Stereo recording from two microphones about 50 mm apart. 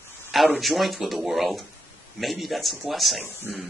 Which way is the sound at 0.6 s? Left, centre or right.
Centre.